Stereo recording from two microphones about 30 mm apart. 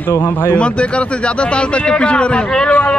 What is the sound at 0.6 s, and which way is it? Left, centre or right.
A man's voice, left.